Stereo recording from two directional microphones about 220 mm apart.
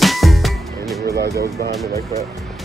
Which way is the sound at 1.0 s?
50° right (ahead or behind).